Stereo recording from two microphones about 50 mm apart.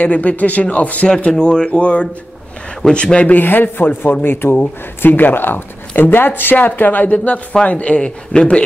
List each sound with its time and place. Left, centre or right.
0.0 s speech: left
1.3 s speech: centre
3.3 s speech: left; by 8.6 s centre